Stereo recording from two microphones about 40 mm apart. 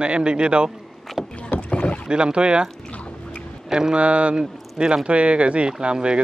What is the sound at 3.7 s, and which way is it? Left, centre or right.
Speech, centre.